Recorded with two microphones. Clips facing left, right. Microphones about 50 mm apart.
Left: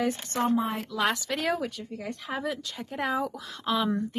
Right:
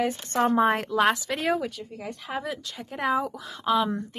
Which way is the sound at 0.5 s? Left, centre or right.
Right.